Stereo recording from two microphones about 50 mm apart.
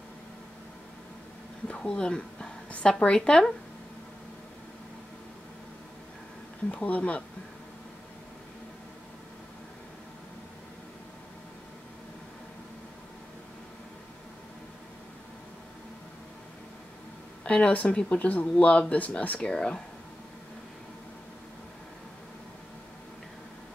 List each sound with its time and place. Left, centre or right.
1.7 s speech: centre
6.7 s speech: left
17.5 s speech: left